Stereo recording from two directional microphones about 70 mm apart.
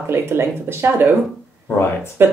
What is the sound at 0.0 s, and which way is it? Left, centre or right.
Speech, right.